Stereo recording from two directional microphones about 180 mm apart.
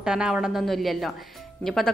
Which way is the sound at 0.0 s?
5° right (ahead or behind).